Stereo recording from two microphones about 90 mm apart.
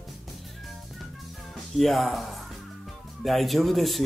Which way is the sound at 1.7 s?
Centre (ahead or behind).